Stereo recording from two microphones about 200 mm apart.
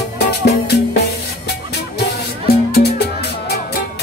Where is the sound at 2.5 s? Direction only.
55° left (ahead or behind).